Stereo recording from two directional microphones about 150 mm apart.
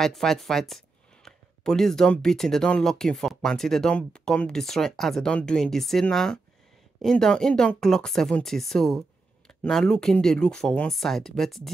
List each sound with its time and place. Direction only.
0.0 s speech: centre (ahead or behind)